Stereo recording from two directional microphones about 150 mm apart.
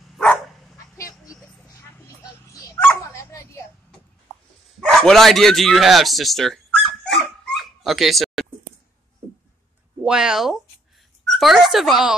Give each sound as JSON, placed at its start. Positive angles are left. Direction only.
{"t": 0.7, "sound": "vehicle", "side_deg": 20}
{"t": 3.0, "sound": "dog", "side_deg": 20}
{"t": 4.7, "sound": "bow-wow", "side_deg": 5}
{"t": 10.0, "sound": "speech", "side_deg": -5}